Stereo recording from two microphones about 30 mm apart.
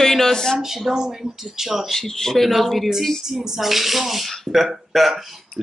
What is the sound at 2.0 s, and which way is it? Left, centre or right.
Speech, centre.